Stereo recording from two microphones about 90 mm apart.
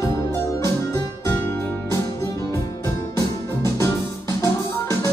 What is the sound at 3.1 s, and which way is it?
Organ, 35° left (ahead or behind).